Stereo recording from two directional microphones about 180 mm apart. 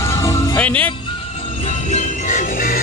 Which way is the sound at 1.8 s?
40° left (ahead or behind).